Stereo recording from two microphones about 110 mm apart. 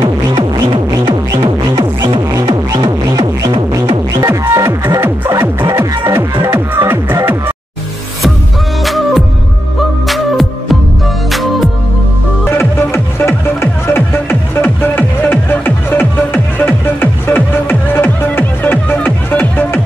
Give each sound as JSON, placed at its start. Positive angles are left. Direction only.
{"t": 0.7, "sound": "music", "side_deg": -40}
{"t": 3.1, "sound": "music", "side_deg": -35}
{"t": 3.8, "sound": "music", "side_deg": -50}
{"t": 4.2, "sound": "music", "side_deg": -30}
{"t": 8.8, "sound": "music", "side_deg": 0}
{"t": 12.4, "sound": "music", "side_deg": 20}